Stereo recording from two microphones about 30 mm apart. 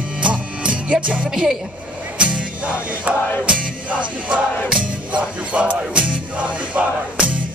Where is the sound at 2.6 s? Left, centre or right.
Right.